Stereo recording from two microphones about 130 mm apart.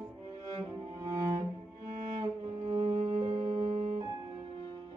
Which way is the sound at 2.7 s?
50° right (ahead or behind).